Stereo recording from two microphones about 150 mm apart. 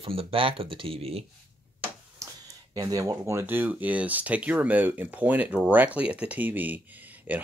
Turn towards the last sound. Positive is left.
turn(degrees=-10)  # may be behind; listen again after turning